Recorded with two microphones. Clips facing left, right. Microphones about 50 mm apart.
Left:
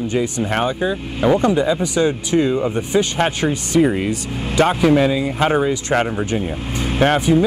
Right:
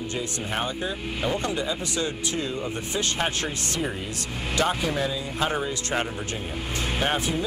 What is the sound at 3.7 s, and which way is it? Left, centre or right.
Speech, left.